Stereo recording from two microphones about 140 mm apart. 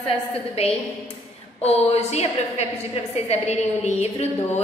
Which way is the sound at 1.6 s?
50° left (ahead or behind).